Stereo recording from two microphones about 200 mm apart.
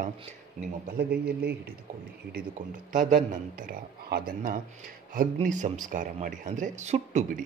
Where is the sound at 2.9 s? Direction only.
40° right (ahead or behind).